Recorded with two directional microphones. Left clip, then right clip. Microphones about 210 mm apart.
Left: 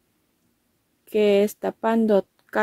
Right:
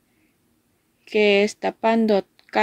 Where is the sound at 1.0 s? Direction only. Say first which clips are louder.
Right 1 dB; 40° left (ahead or behind).